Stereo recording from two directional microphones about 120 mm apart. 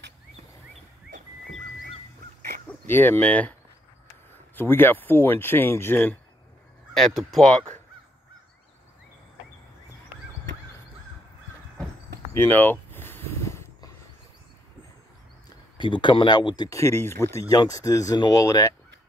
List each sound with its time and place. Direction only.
2.9 s speech: 15° left (ahead or behind)
4.6 s speech: 15° left (ahead or behind)
6.9 s speech: 5° left (ahead or behind)
12.4 s a sound: 15° left (ahead or behind)
15.8 s speech: 40° left (ahead or behind)